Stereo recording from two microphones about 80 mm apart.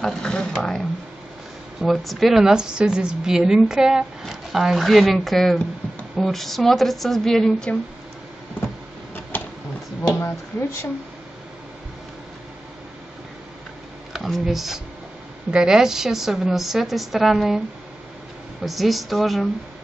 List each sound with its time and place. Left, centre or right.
0.0 s a woman's voice: centre
9.3 s a sound: left
14.1 s a woman's voice: centre
18.6 s a woman's voice: centre